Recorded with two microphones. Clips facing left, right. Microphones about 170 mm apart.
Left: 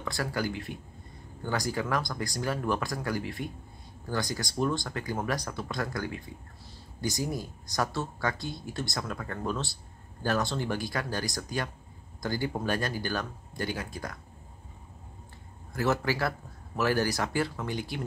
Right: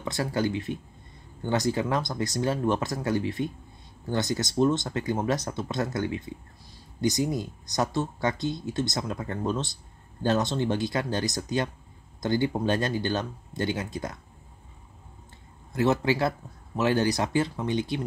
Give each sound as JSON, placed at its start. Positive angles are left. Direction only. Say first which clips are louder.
{"t": 0.0, "sound": "speech", "louder": "right 4 dB", "side_deg": -20}
{"t": 15.7, "sound": "speech", "louder": "right 4 dB", "side_deg": -20}